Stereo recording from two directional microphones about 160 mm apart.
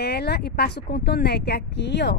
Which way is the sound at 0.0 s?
90° left.